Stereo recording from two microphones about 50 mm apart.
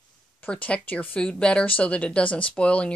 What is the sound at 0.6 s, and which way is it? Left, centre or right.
Speech, left.